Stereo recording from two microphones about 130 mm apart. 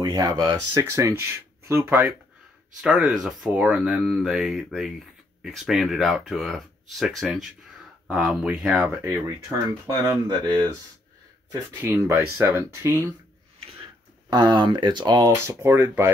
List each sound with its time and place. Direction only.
0.0 s speech: 30° right (ahead or behind)
2.8 s speech: 5° right (ahead or behind)
10.0 s speech: 25° right (ahead or behind)
11.7 s speech: 15° right (ahead or behind)
14.3 s speech: 35° right (ahead or behind)
15.3 s speech: 20° right (ahead or behind)